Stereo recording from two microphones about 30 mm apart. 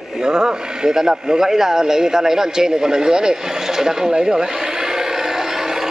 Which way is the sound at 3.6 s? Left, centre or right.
Centre.